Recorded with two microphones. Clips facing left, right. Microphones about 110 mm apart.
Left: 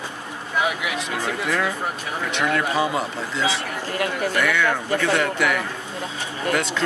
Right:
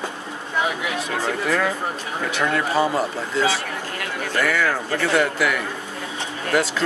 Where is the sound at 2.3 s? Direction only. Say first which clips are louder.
Even; 5° right (ahead or behind).